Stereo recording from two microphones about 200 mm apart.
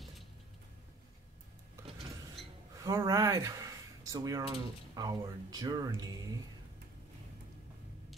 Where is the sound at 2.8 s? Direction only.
15° right (ahead or behind).